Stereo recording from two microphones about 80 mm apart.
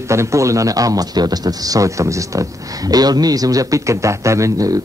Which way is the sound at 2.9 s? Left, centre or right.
Right.